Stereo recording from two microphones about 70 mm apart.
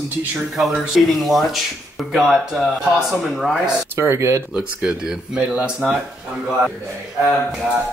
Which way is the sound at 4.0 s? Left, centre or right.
Right.